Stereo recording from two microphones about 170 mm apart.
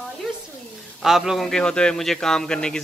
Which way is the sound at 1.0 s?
Centre (ahead or behind).